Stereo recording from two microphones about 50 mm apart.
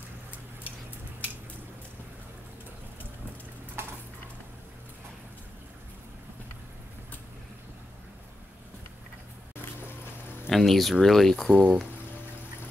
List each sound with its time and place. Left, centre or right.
3.8 s dishes: right
10.5 s speech: centre
11.5 s speech: right